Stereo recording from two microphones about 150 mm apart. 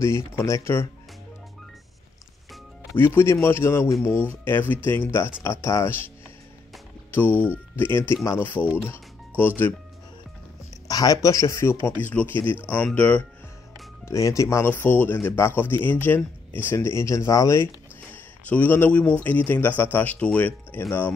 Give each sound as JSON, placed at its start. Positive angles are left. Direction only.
{"t": 0.4, "sound": "speech", "side_deg": 20}
{"t": 3.0, "sound": "speech", "side_deg": 15}
{"t": 10.9, "sound": "a man's voice", "side_deg": 25}